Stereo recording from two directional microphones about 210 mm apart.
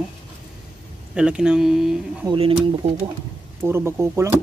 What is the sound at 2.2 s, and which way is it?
Speech, 25° right (ahead or behind).